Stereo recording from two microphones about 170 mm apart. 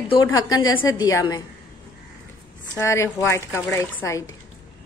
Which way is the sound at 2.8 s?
15° left (ahead or behind).